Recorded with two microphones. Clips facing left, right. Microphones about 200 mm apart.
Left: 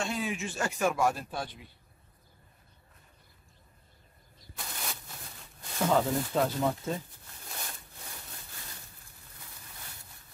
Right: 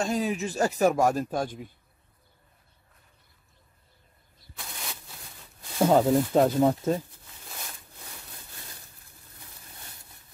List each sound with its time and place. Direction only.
0.0 s speech: 40° right (ahead or behind)
4.6 s a sound: centre (ahead or behind)
5.9 s speech: 45° right (ahead or behind)